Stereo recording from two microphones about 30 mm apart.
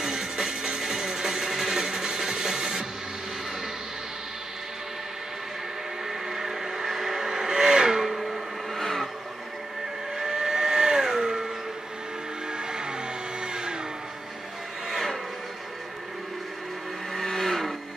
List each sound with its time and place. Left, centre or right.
0.0 s music: right
6.0 s vehicle: centre
8.1 s blender: centre
8.7 s a sound: centre
10.1 s vehicle: right
12.5 s music: right
17.1 s vehicle: centre